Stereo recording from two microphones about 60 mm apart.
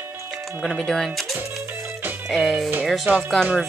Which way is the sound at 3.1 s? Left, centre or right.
Right.